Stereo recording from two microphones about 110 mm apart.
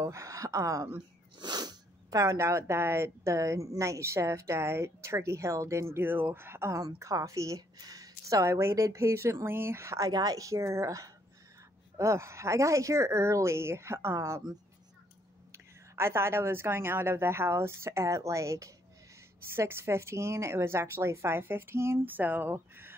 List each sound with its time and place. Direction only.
0.0 s speech: 30° right (ahead or behind)
1.4 s speech: 40° right (ahead or behind)
15.5 s speech: 25° right (ahead or behind)